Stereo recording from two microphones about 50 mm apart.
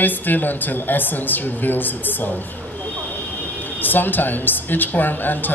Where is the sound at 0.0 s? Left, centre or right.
Left.